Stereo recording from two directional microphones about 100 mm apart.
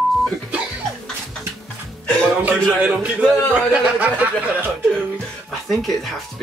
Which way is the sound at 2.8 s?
10° right (ahead or behind).